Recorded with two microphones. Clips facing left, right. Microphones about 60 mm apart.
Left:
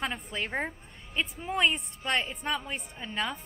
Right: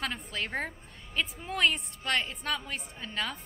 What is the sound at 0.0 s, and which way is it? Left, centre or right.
A woman's voice, centre.